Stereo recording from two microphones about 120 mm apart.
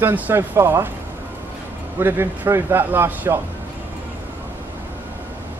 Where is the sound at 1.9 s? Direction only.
15° right (ahead or behind).